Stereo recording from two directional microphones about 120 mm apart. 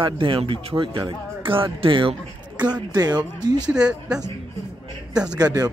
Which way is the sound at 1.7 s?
45° right (ahead or behind).